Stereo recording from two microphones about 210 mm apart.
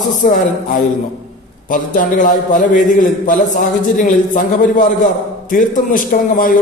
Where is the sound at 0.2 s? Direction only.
40° left (ahead or behind).